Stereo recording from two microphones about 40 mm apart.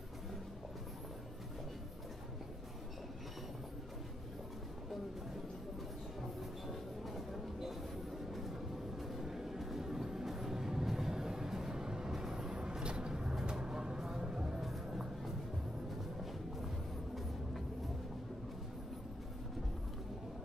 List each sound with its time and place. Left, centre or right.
8.4 s vehicle: centre
14.0 s music: centre